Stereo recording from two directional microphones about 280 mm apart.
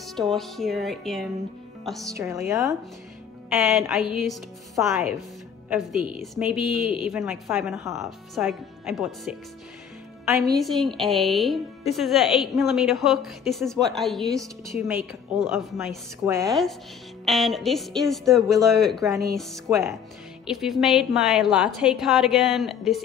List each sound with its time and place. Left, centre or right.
0.0 s a woman's voice: centre
2.0 s a woman's voice: centre
10.5 s a woman's voice: centre
16.4 s a woman's voice: centre